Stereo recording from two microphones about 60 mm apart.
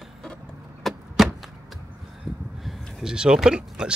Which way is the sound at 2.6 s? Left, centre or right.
Centre.